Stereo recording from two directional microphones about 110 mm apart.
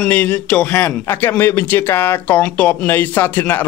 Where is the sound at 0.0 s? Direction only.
15° left (ahead or behind).